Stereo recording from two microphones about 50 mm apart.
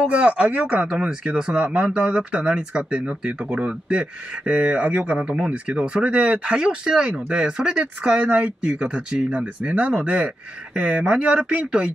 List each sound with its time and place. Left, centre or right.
0.1 s speech: right
1.6 s speech: right